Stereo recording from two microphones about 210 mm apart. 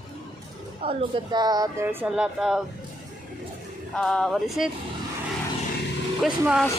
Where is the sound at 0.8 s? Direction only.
25° right (ahead or behind); by 2.6 s 5° right (ahead or behind).